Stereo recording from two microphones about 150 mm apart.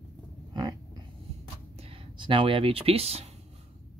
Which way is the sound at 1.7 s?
40° right (ahead or behind).